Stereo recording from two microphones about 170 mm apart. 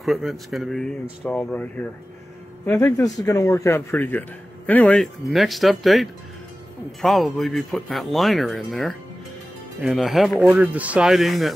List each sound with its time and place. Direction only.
0.0 s speech: centre (ahead or behind)
1.2 s a man's voice: 10° left (ahead or behind)
3.2 s a man's voice: 20° left (ahead or behind); by 11.5 s centre (ahead or behind)